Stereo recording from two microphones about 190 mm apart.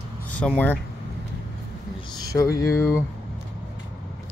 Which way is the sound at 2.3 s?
20° left (ahead or behind).